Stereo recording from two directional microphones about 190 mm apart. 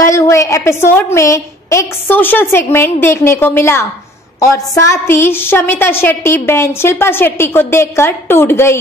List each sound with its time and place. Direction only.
0.0 s a woman's voice: 15° left (ahead or behind)